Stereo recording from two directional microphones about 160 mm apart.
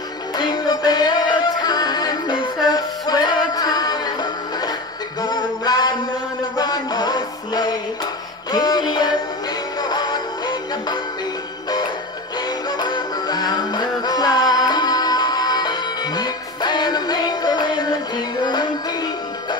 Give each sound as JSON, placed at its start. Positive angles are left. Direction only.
{"t": 0.4, "sound": "music", "side_deg": 25}
{"t": 12.7, "sound": "music", "side_deg": 25}